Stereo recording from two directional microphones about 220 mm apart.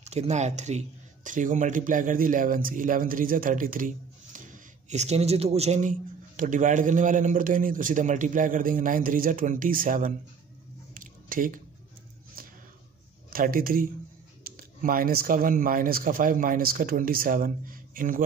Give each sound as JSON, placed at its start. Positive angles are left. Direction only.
{"t": 0.0, "sound": "speech", "side_deg": -30}
{"t": 11.0, "sound": "a sound", "side_deg": -40}
{"t": 13.3, "sound": "speech", "side_deg": -40}